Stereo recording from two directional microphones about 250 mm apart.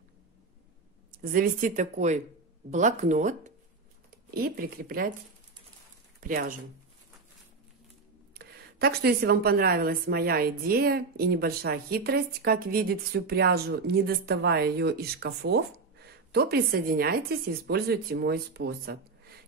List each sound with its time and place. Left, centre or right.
1.1 s a woman's voice: right
6.2 s a woman's voice: right
8.4 s a woman's voice: right